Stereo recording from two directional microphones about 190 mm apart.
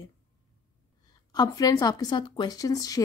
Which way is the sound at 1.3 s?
20° left (ahead or behind).